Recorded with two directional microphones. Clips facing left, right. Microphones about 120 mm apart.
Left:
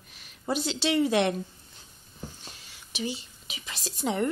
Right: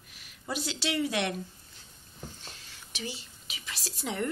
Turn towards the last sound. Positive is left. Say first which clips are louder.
# left 5 dB
turn(degrees=25)  # may be behind; listen again after turning